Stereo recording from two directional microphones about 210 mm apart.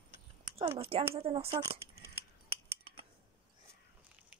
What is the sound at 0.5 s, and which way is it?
Speech, 25° right (ahead or behind).